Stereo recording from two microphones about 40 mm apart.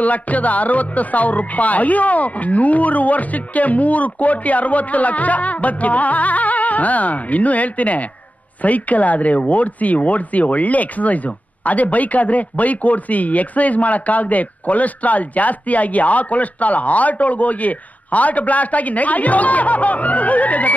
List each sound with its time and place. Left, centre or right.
0.0 s speech: left